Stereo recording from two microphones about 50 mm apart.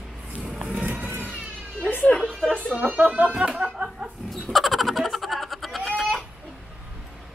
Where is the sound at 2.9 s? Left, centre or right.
Right.